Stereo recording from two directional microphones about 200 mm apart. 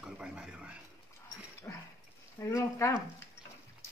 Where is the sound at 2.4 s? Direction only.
15° left (ahead or behind).